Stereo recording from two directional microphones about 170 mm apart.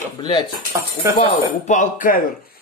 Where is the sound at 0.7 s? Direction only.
20° right (ahead or behind).